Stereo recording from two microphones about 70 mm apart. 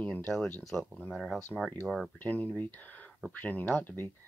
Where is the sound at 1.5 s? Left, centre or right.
Left.